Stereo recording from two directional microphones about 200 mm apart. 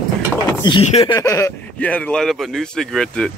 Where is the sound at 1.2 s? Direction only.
15° left (ahead or behind).